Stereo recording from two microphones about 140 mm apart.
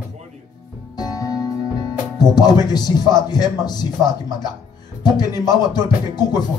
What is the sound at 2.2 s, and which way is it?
Speech, 30° left (ahead or behind).